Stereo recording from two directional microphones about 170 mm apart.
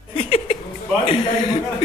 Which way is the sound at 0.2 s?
35° left (ahead or behind).